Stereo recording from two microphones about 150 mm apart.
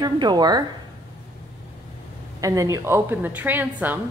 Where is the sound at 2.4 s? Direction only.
20° right (ahead or behind).